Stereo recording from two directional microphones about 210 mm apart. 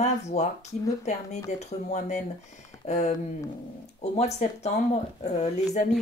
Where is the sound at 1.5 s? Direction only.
35° left (ahead or behind).